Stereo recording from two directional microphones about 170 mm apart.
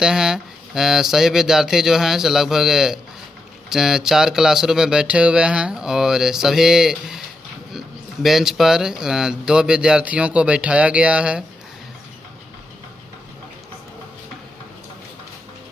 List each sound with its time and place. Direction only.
0.0 s speech: 5° right (ahead or behind)